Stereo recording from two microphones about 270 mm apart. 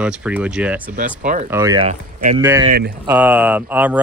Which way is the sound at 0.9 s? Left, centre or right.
Right.